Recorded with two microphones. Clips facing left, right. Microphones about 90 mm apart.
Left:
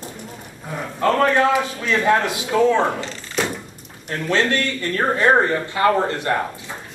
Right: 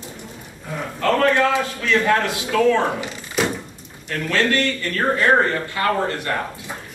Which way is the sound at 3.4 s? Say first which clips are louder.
Right 2 dB; 5° right (ahead or behind).